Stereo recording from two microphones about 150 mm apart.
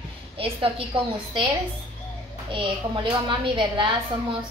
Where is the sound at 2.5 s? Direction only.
35° right (ahead or behind).